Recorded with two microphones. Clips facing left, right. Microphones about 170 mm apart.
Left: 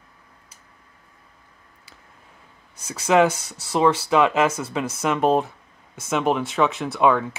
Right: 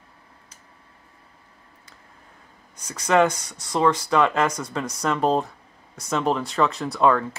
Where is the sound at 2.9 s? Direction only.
10° left (ahead or behind).